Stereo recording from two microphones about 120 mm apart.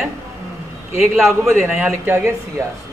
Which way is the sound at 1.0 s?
Centre (ahead or behind).